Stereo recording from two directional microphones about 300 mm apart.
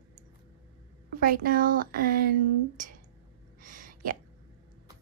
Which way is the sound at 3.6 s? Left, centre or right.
Right.